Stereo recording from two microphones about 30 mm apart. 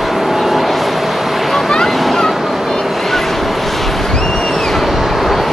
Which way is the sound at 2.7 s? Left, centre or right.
Centre.